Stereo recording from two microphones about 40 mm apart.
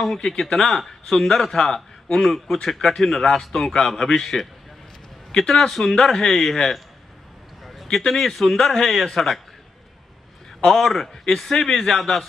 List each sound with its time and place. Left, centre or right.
0.4 s a man's voice: centre
7.6 s a sound: centre
8.1 s a man's voice: centre
10.6 s a man's voice: centre